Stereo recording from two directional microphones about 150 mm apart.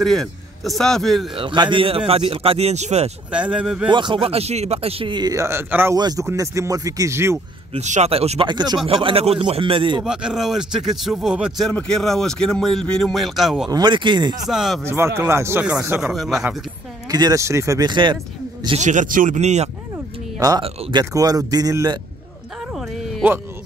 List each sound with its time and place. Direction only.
0.0 s speech: centre (ahead or behind)
1.3 s speech: 35° right (ahead or behind)
3.3 s speech: 5° right (ahead or behind)
3.9 s speech: 35° right (ahead or behind); by 7.3 s 20° right (ahead or behind)
7.7 s speech: 50° right (ahead or behind); by 10.0 s 35° right (ahead or behind)
10.0 s speech: 5° right (ahead or behind)
13.7 s speech: 30° right (ahead or behind)
14.5 s speech: centre (ahead or behind)
14.9 s speech: 15° right (ahead or behind)
16.0 s speech: centre (ahead or behind)
17.1 s speech: 25° right (ahead or behind)
18.8 s speech: 55° right (ahead or behind)
20.3 s speech: 25° right (ahead or behind)